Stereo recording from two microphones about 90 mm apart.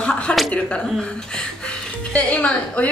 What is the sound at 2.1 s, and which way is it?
Speech, 15° left (ahead or behind).